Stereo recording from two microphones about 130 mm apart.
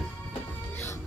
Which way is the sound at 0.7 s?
20° left (ahead or behind).